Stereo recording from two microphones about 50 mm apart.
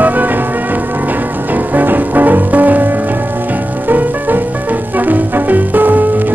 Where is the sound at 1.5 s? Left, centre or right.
Right.